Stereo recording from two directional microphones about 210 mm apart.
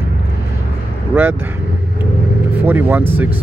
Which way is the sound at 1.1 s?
10° right (ahead or behind).